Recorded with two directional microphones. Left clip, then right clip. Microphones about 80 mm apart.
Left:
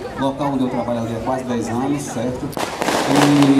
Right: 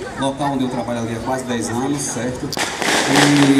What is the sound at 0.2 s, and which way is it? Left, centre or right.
A man's voice, centre.